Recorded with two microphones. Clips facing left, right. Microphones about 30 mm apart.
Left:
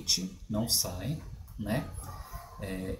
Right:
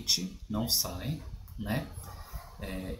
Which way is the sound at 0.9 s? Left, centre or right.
Centre.